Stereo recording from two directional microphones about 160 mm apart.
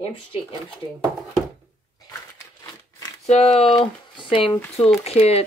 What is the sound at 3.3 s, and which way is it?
Speech, 40° left (ahead or behind).